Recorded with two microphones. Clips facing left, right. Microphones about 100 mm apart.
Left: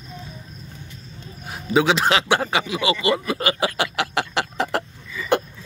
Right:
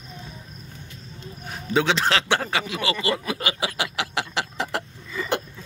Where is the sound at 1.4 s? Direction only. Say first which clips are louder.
Left 3 dB; 5° left (ahead or behind).